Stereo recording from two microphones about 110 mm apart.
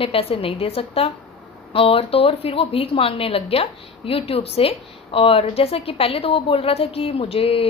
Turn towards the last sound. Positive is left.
turn(degrees=60)  # may be behind; listen again after turning